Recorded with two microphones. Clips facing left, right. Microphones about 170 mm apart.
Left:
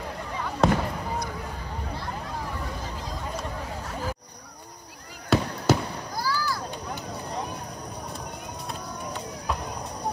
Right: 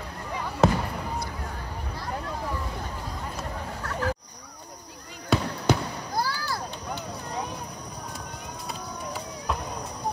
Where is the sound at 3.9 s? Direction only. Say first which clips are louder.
Right 6 dB; 70° right (ahead or behind).